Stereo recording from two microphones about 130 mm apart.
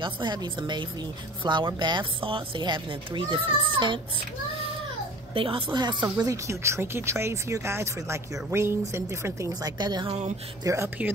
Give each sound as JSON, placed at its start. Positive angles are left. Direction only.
{"t": 0.0, "sound": "speech", "side_deg": -35}
{"t": 5.3, "sound": "speech", "side_deg": -40}
{"t": 6.2, "sound": "speech", "side_deg": -25}